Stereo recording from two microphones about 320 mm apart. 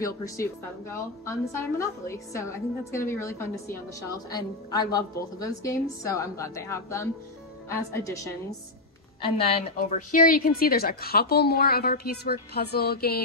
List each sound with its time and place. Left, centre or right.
0.0 s a woman's voice: centre; by 13.2 s left